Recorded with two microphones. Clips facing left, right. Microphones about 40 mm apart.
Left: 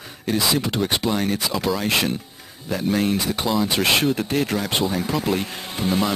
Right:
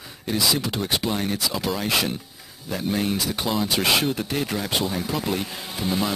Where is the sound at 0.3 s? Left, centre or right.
Centre.